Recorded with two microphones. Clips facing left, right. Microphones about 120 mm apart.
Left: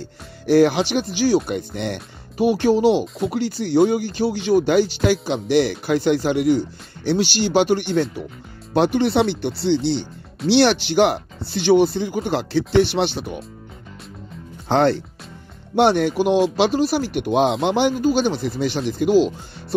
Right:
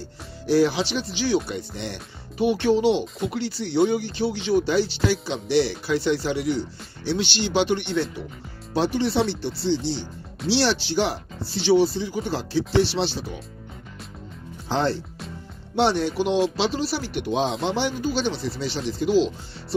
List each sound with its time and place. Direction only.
0.5 s speech: 55° left (ahead or behind)
2.4 s speech: 40° left (ahead or behind)
8.7 s speech: 60° left (ahead or behind)
14.7 s speech: 65° left (ahead or behind)